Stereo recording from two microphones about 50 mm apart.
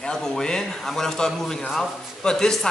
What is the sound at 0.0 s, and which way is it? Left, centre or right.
A man's voice, centre.